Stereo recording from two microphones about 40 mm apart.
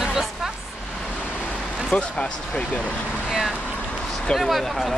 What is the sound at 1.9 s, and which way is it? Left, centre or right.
Speech, left.